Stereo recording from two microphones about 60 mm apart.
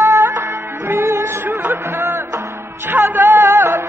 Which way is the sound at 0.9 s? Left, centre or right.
Right.